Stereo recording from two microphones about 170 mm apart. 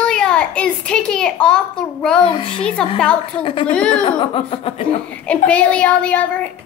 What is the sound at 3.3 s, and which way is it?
Speech, 30° left (ahead or behind).